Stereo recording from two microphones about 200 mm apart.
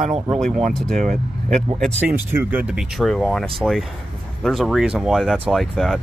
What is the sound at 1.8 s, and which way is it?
Speech, centre (ahead or behind).